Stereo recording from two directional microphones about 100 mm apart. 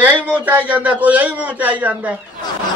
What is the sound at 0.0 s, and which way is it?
A man's voice, 20° right (ahead or behind).